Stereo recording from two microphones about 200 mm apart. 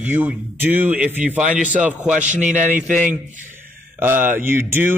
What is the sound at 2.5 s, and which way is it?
Speech, 5° right (ahead or behind).